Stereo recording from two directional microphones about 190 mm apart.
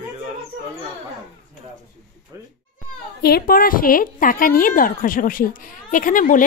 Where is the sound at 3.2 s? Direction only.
50° left (ahead or behind).